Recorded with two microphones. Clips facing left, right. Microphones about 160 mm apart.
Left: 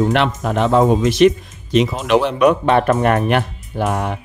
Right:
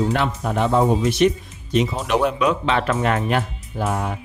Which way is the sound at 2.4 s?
55° left (ahead or behind).